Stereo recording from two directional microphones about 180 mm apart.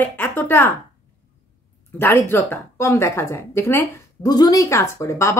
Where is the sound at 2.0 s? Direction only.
10° left (ahead or behind).